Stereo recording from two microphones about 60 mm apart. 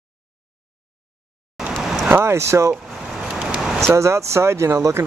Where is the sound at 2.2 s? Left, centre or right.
Right.